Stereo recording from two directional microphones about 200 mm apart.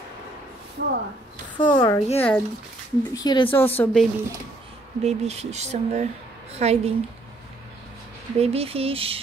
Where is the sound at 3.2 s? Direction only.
20° left (ahead or behind).